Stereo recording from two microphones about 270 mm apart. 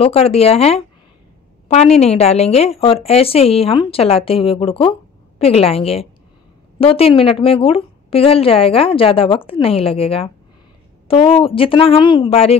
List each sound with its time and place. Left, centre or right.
0.0 s a woman's voice: left